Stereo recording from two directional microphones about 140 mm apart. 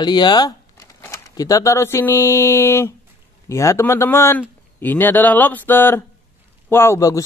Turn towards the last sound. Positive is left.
turn(degrees=20)  # may be behind; listen again after turning